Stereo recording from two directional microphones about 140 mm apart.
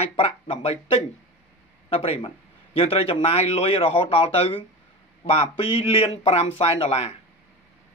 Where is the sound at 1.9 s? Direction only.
40° left (ahead or behind).